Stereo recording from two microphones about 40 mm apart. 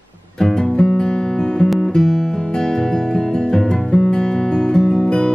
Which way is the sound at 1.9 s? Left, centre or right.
Centre.